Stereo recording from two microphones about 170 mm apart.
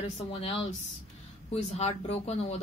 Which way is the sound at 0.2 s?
35° left (ahead or behind).